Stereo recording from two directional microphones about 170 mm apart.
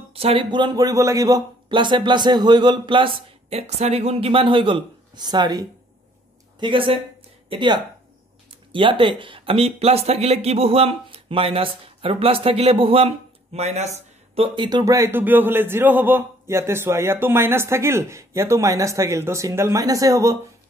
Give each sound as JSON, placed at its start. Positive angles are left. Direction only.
{"t": 0.1, "sound": "speech", "side_deg": -35}